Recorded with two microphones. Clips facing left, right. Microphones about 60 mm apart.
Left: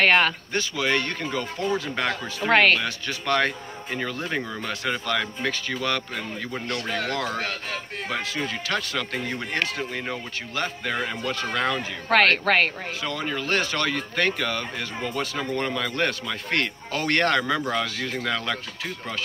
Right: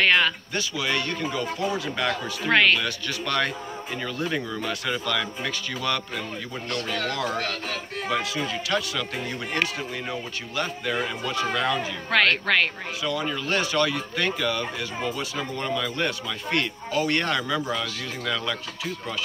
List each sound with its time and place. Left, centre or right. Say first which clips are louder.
0.2 s a man's voice: left 1 dB; left
4.2 s a man's voice: right 1 dB; left
8.1 s a man's voice: right 2 dB; left